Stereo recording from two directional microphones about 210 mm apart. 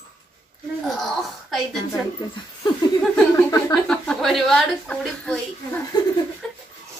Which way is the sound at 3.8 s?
5° left (ahead or behind).